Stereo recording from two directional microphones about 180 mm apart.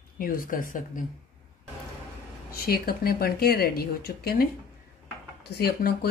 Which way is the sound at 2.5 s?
60° left (ahead or behind).